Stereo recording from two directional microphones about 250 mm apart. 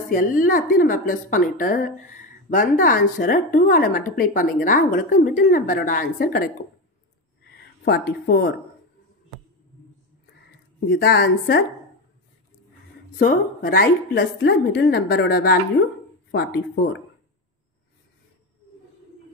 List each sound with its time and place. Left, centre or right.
0.1 s speech: left
10.9 s speech: left
13.2 s speech: left